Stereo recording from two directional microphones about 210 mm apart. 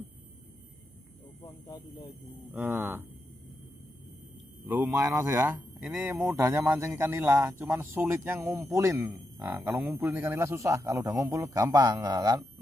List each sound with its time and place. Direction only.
1.4 s speech: 20° left (ahead or behind)
2.5 s speech: 10° right (ahead or behind)
4.6 s speech: 10° right (ahead or behind)